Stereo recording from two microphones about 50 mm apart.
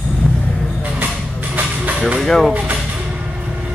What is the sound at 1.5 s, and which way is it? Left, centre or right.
Music, right.